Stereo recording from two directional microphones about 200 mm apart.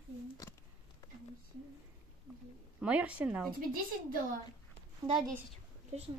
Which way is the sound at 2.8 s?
5° right (ahead or behind).